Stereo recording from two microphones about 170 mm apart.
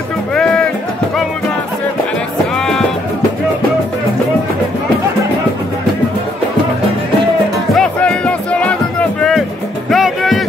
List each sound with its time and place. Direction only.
0.3 s music: 5° left (ahead or behind)
7.7 s music: 5° left (ahead or behind)
9.8 s music: centre (ahead or behind)